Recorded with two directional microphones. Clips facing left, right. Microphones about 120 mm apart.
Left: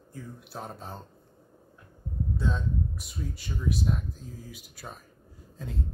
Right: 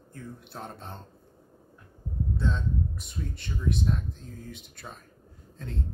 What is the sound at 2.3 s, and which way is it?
Speech, 5° left (ahead or behind).